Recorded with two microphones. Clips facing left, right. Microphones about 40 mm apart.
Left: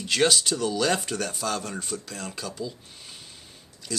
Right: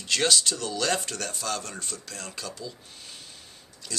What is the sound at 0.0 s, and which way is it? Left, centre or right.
Speech, centre.